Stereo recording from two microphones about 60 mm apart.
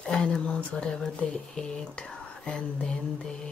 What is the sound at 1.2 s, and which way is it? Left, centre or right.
Speech, centre.